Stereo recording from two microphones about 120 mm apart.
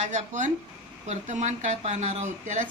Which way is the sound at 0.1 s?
90° right.